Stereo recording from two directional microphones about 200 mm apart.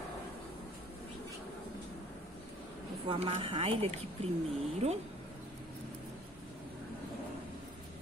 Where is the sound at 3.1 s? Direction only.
30° right (ahead or behind).